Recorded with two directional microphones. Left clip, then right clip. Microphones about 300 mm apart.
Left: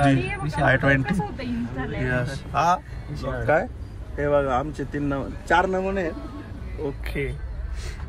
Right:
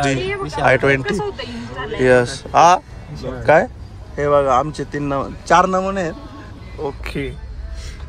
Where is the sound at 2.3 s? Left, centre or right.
Right.